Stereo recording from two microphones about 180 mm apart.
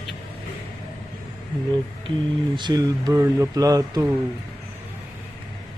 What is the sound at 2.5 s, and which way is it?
Speech, 25° right (ahead or behind).